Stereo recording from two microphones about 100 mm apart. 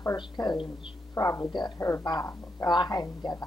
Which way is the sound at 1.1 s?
35° left (ahead or behind).